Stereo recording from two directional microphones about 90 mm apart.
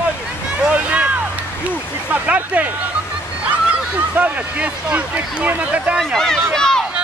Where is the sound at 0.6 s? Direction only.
15° right (ahead or behind).